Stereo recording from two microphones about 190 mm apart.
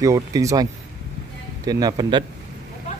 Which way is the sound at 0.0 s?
15° right (ahead or behind).